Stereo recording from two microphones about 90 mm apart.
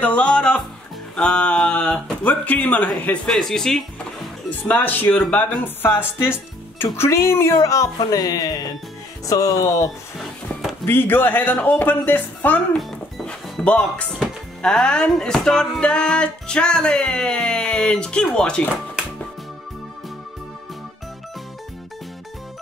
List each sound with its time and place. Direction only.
0.0 s speech: 15° left (ahead or behind)
3.3 s speech: 5° left (ahead or behind)
4.5 s speech: 20° left (ahead or behind); by 9.8 s 40° left (ahead or behind)
10.1 s music: centre (ahead or behind)
10.9 s speech: 25° left (ahead or behind)
12.7 s music: 5° left (ahead or behind)
14.6 s speech: 10° left (ahead or behind)